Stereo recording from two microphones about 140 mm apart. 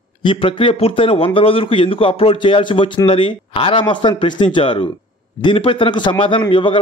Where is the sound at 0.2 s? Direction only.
35° left (ahead or behind).